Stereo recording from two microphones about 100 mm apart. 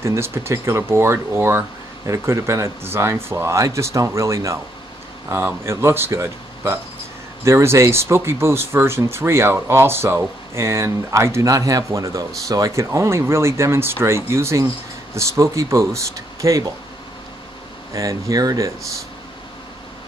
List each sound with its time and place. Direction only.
0.0 s speech: 25° right (ahead or behind)
17.9 s speech: 35° right (ahead or behind)